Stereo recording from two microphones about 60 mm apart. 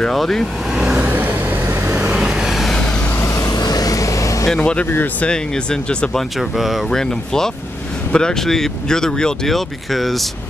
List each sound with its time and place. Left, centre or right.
0.0 s speech: centre
0.9 s vehicle: right
2.1 s vehicle: centre
3.4 s vehicle: left
4.6 s speech: centre
6.5 s speech: centre
6.9 s speech: centre